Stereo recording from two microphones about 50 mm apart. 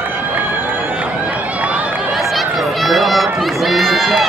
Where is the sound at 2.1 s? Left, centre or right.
Centre.